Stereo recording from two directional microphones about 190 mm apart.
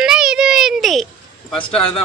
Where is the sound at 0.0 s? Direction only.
5° right (ahead or behind).